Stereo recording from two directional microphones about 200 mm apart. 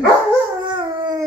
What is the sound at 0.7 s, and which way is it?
Dog, 25° right (ahead or behind).